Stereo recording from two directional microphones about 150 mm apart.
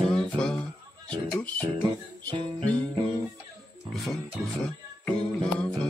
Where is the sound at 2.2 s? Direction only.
35° right (ahead or behind).